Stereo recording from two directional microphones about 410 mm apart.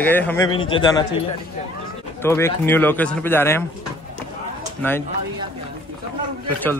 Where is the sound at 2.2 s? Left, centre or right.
Centre.